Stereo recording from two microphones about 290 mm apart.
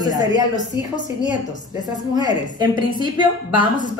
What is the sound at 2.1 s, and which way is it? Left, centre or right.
A woman's voice, centre.